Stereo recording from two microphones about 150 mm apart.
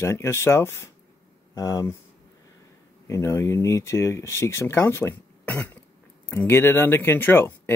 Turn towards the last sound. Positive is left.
turn(degrees=15)  # may be behind; listen again after turning